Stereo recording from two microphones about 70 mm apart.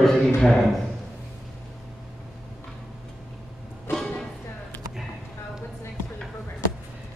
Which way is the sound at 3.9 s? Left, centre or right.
Left.